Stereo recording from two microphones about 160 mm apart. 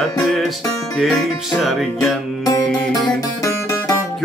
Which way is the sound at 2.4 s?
20° left (ahead or behind).